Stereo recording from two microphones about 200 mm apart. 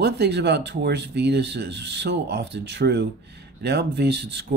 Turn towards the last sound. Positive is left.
turn(degrees=-55)  # may be behind; listen again after turning